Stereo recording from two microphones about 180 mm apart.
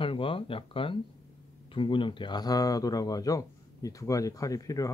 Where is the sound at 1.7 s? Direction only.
30° left (ahead or behind).